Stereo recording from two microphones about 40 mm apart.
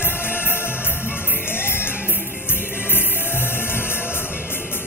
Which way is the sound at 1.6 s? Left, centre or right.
Left.